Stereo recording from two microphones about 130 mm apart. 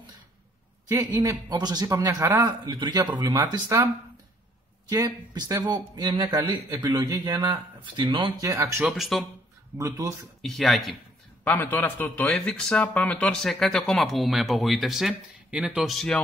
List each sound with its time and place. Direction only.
1.0 s a man's voice: 30° right (ahead or behind)
8.4 s speech: 25° right (ahead or behind)
8.8 s a man's voice: centre (ahead or behind)
9.8 s speech: 25° right (ahead or behind)
10.4 s a man's voice: centre (ahead or behind)
11.4 s a man's voice: 15° left (ahead or behind)